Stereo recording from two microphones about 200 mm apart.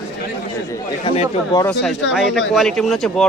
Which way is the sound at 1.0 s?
30° left (ahead or behind).